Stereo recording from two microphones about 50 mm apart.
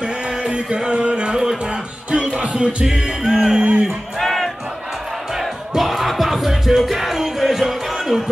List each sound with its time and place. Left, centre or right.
0.4 s music: centre
2.5 s speech: centre
4.2 s music: centre